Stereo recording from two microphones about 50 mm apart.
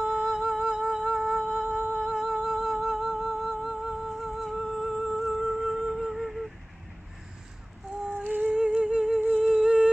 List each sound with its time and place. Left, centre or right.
0.0 s music: centre
8.2 s music: right
8.5 s music: centre
9.4 s humming: centre